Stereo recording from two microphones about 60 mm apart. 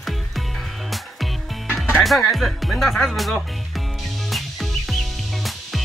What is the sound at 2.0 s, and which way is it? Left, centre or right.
Speech, centre.